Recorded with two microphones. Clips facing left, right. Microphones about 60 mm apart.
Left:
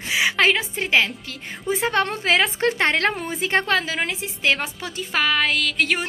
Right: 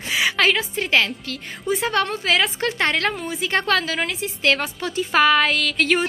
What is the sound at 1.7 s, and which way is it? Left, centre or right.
A woman's voice, left.